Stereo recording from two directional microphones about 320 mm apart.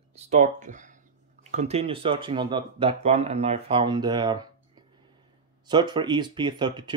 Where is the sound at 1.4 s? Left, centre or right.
Right.